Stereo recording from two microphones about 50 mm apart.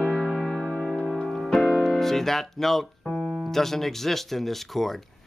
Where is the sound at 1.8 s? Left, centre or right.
Centre.